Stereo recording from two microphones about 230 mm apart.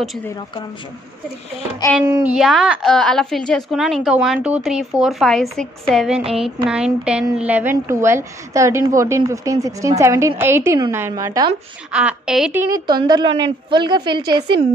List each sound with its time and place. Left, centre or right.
2.0 s a woman's voice: centre
2.3 s a woman's voice: centre
12.7 s a woman's voice: centre